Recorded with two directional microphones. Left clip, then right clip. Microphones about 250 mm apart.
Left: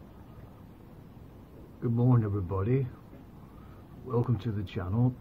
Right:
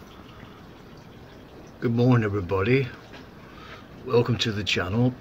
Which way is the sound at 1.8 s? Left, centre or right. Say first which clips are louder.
Right 8 dB; centre.